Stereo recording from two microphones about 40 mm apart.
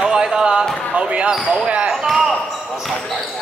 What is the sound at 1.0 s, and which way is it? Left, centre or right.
Speech, right.